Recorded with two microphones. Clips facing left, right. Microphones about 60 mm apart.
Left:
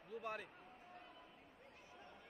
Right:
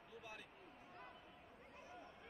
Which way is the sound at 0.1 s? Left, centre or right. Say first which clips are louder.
Left 10 dB; left.